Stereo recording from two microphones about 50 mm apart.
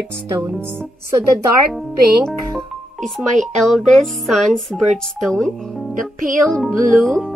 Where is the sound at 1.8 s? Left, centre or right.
Centre.